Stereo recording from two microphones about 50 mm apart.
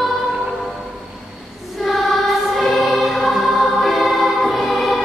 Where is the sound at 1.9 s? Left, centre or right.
Centre.